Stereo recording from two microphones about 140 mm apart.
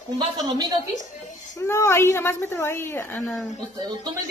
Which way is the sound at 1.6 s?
20° left (ahead or behind).